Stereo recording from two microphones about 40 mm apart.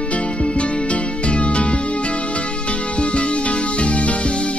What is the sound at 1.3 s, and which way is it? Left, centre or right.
Music, left.